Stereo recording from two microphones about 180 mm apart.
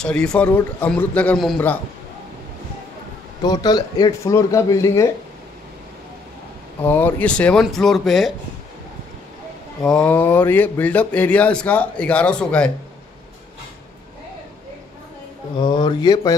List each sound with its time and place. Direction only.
0.0 s speech: 5° left (ahead or behind)
3.4 s speech: 20° left (ahead or behind)
6.8 s speech: 10° left (ahead or behind)
9.8 s speech: 5° left (ahead or behind)
15.5 s speech: 25° left (ahead or behind)